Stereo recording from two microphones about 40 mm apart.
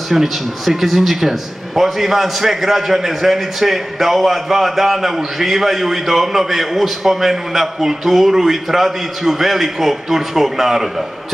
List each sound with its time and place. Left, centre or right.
0.1 s a man's voice: centre